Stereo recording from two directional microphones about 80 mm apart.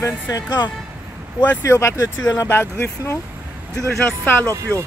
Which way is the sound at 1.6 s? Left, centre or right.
Left.